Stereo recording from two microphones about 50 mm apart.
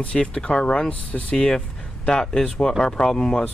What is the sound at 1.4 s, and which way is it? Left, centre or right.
Speech, centre.